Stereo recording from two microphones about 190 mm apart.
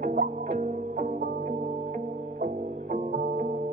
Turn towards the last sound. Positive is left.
turn(degrees=-45)  # may be behind; listen again after turning